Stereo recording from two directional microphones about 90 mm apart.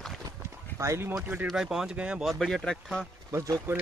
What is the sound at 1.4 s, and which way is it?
Speech, 5° right (ahead or behind).